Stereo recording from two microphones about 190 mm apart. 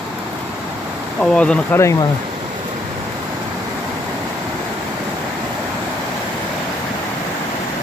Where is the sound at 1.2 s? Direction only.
5° left (ahead or behind).